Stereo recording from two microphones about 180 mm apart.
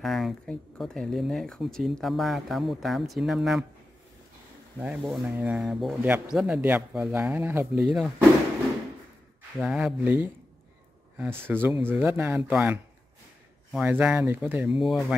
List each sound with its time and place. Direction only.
0.0 s speech: centre (ahead or behind)
4.7 s speech: 5° right (ahead or behind)
9.6 s speech: centre (ahead or behind)